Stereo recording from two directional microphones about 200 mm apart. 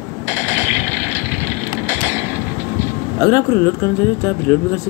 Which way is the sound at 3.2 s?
15° left (ahead or behind).